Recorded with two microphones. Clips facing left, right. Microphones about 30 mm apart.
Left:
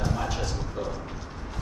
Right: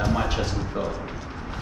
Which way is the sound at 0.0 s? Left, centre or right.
Right.